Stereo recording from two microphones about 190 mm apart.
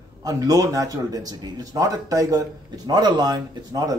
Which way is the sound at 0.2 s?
20° right (ahead or behind).